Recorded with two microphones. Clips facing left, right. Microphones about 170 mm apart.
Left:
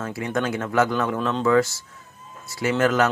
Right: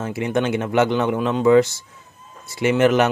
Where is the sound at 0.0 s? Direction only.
20° right (ahead or behind).